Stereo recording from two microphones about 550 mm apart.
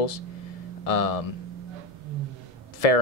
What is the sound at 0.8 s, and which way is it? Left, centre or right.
Speech, left.